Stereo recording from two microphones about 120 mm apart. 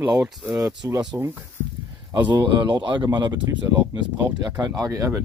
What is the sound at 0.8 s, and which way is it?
Speech, 25° right (ahead or behind).